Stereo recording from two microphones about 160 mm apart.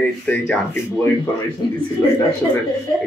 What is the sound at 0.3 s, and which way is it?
Speech, 10° left (ahead or behind).